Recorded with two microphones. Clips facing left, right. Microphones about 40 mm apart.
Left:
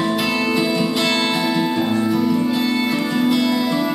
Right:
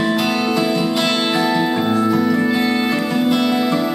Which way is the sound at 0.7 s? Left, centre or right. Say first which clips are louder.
Right 1 dB; centre.